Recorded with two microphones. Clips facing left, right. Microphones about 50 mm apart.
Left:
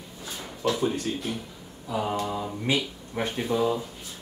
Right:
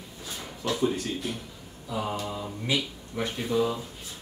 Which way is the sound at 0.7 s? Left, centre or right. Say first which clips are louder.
Even; centre.